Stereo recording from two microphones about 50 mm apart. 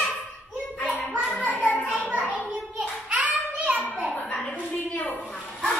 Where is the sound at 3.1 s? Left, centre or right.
Right.